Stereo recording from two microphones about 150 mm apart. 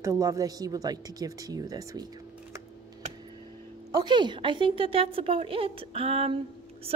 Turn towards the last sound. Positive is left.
turn(degrees=-40)  # may be behind; listen again after turning